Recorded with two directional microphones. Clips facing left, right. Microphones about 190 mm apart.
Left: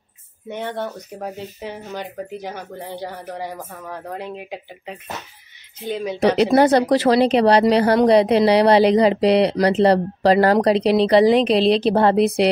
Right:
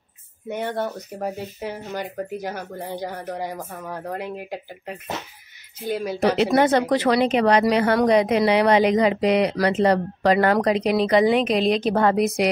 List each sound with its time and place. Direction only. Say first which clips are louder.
0.5 s speech: right 1 dB; 10° right (ahead or behind)
6.3 s speech: left 4 dB; 40° left (ahead or behind)